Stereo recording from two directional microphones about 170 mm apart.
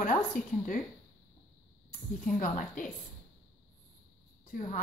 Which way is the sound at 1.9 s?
50° left (ahead or behind).